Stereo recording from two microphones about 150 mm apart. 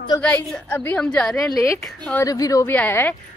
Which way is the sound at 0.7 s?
15° left (ahead or behind).